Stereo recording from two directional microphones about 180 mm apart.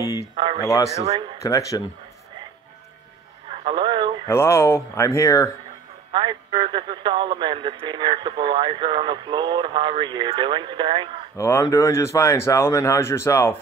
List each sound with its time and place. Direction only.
0.0 s a sound: 20° left (ahead or behind)
0.6 s speech: 15° left (ahead or behind)
1.0 s speech: 35° right (ahead or behind)
1.4 s speech: 15° left (ahead or behind)
3.4 s radio: 30° right (ahead or behind)
4.3 s speech: 15° left (ahead or behind)
6.1 s speech: 25° right (ahead or behind)
11.3 s speech: 15° left (ahead or behind)